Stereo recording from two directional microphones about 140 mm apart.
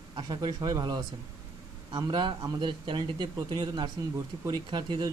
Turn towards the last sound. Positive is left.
turn(degrees=-30)  # may be behind; listen again after turning